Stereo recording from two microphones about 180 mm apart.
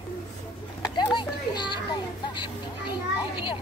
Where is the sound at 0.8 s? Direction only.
25° left (ahead or behind).